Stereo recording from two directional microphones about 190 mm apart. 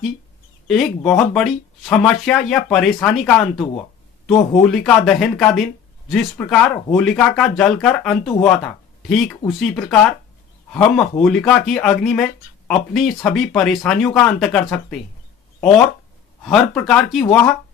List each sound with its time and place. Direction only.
0.7 s speech: 5° left (ahead or behind)
4.6 s speech: centre (ahead or behind)
16.4 s speech: centre (ahead or behind)